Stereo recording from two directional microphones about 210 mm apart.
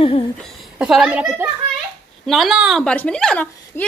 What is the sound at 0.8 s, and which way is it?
A woman's voice, centre (ahead or behind).